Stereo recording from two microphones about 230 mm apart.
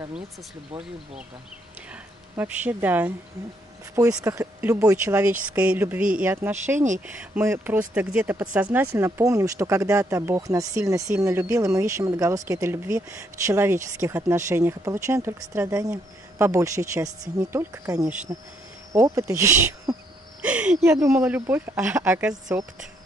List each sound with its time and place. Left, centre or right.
2.3 s speech: centre